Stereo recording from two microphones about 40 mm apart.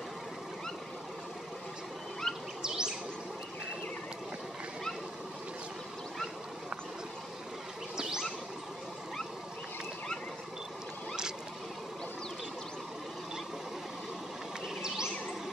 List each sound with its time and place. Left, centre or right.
2.3 s chirp: centre
2.6 s bird: centre
8.0 s a sound: centre